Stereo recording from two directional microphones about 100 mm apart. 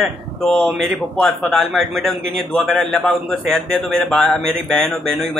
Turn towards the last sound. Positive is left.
turn(degrees=5)  # may be behind; listen again after turning